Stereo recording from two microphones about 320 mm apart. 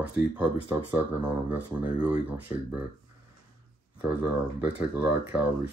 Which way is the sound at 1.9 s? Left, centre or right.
Centre.